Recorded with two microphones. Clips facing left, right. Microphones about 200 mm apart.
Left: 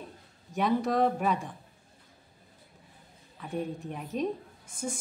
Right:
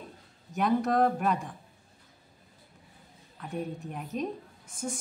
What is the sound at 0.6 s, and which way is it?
Speech, centre (ahead or behind).